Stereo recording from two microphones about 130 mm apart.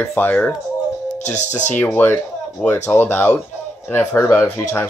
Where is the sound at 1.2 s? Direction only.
65° left (ahead or behind).